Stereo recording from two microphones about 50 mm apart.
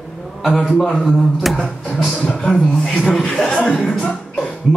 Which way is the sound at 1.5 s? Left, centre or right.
Centre.